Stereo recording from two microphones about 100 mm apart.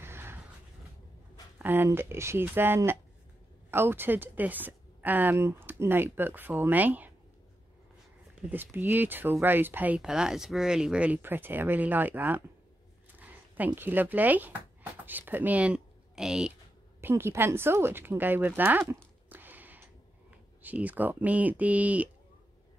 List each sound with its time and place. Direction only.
0.0 s a sound: 25° right (ahead or behind)
1.6 s speech: 20° right (ahead or behind)
8.4 s speech: 20° right (ahead or behind)
13.7 s speech: 20° right (ahead or behind)
17.0 s speech: 25° right (ahead or behind)